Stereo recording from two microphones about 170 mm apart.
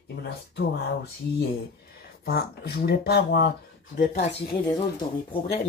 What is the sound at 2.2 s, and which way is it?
Speech, 65° left (ahead or behind).